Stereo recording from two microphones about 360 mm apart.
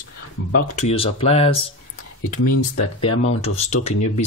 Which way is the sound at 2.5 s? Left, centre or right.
Left.